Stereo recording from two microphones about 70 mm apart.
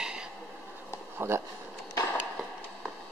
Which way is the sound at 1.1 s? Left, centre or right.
Right.